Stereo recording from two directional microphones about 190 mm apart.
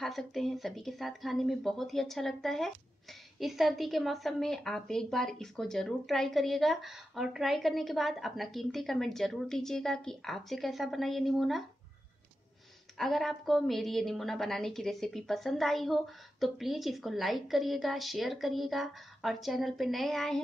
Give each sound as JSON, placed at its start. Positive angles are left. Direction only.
{"t": 0.0, "sound": "a woman's voice", "side_deg": 0}
{"t": 12.9, "sound": "a woman's voice", "side_deg": 0}